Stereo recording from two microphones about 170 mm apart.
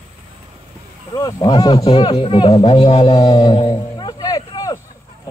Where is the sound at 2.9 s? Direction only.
25° left (ahead or behind).